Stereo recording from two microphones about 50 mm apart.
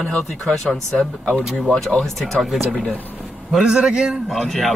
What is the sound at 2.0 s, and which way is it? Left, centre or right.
Speech, centre.